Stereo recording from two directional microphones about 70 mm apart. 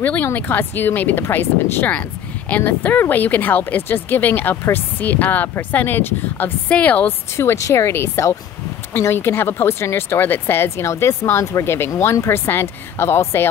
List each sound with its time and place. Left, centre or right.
0.0 s speech: left
7.3 s speech: left